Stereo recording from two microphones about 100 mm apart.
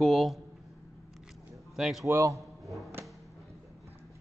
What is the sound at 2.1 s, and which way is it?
Speech, 30° right (ahead or behind).